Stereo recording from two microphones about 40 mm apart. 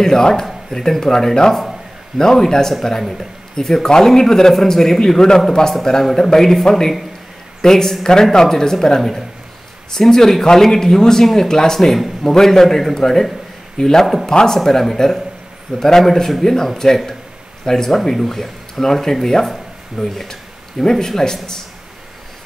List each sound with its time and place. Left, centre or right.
0.0 s a man's voice: centre
14.6 s a man's voice: centre